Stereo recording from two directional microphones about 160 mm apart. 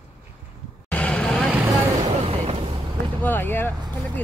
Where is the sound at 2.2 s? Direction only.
35° right (ahead or behind).